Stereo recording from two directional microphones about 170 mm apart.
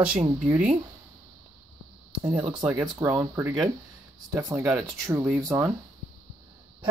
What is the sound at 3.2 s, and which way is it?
Speech, 20° right (ahead or behind).